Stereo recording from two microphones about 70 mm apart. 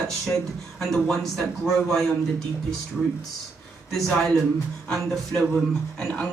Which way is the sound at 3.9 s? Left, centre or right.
Centre.